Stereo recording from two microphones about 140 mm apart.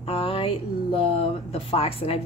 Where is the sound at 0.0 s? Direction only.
45° left (ahead or behind).